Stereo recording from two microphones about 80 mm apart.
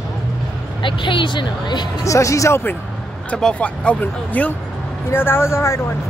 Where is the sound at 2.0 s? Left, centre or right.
Left.